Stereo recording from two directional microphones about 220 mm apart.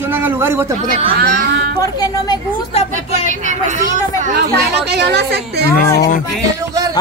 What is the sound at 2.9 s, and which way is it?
Speech, 35° right (ahead or behind).